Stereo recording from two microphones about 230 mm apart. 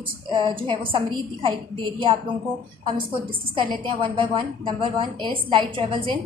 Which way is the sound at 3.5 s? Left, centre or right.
Right.